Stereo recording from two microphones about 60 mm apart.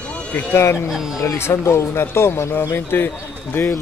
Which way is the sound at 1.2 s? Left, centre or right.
Left.